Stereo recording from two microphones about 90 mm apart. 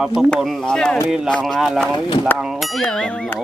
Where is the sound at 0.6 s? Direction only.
10° left (ahead or behind).